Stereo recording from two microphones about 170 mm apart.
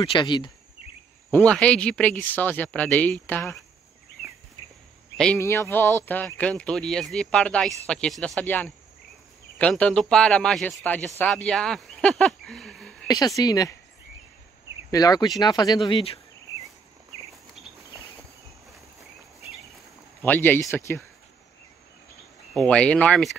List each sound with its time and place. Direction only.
0.2 s speech: 25° left (ahead or behind)
1.3 s speech: 5° left (ahead or behind)
5.1 s speech: 5° left (ahead or behind)
5.4 s speech: 15° left (ahead or behind)
13.1 s speech: 20° left (ahead or behind)
14.9 s speech: 20° left (ahead or behind)
20.2 s speech: 10° left (ahead or behind)
22.5 s speech: 5° left (ahead or behind)